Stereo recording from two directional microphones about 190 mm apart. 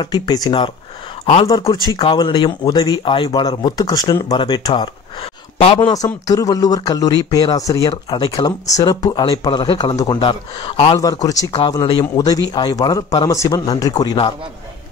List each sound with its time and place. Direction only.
0.0 s a man's voice: 20° left (ahead or behind)